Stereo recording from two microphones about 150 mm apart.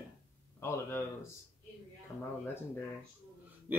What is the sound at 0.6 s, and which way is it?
Speech, 15° left (ahead or behind).